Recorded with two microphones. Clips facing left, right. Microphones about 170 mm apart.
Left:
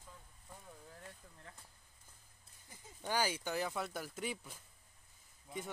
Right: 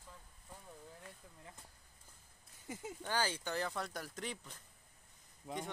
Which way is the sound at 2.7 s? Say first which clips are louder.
Right 15 dB; 80° right.